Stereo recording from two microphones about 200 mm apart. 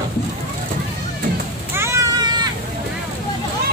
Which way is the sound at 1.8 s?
15° right (ahead or behind).